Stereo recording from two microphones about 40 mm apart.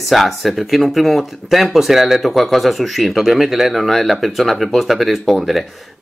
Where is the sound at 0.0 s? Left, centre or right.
Centre.